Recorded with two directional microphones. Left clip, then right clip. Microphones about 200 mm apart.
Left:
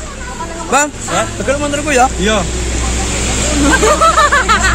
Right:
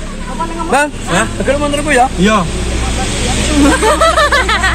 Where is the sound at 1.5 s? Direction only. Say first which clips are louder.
Right 2 dB; 35° left (ahead or behind).